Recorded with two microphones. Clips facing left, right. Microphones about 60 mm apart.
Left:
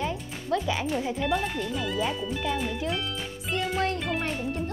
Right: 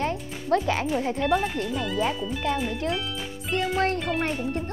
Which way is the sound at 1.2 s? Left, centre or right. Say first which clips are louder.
Right 3 dB; centre.